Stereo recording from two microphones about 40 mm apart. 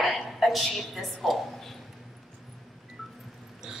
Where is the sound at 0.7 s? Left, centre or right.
Centre.